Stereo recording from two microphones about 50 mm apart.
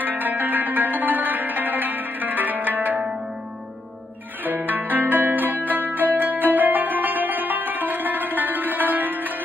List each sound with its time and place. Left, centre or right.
0.2 s music: right
4.5 s zither: right
5.7 s music: right